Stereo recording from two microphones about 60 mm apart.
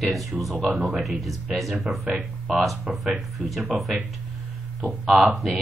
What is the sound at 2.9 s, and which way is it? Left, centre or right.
Speech, centre.